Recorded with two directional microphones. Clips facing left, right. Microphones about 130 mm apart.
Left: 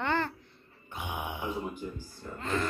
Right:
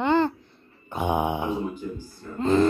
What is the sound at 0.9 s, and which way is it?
Mantra, 35° right (ahead or behind).